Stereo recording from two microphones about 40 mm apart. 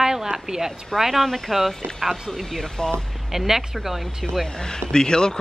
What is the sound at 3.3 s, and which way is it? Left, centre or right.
Speech, centre.